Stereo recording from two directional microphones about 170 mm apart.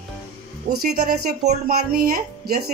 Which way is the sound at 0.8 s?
50° right (ahead or behind).